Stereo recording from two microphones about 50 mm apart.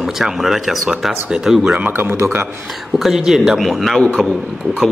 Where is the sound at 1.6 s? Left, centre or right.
Right.